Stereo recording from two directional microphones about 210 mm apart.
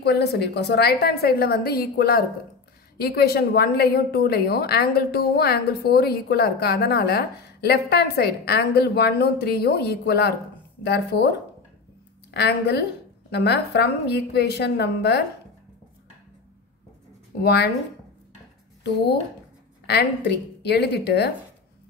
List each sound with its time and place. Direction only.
0.0 s a woman's voice: 50° left (ahead or behind)
12.3 s a woman's voice: 50° left (ahead or behind)
17.4 s a woman's voice: 50° left (ahead or behind)
19.9 s a woman's voice: 50° left (ahead or behind)